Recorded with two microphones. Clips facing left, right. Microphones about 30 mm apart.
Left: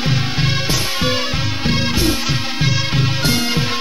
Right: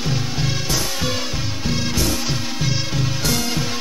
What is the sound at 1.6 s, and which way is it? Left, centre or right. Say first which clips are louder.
Music: left 4 dB; left.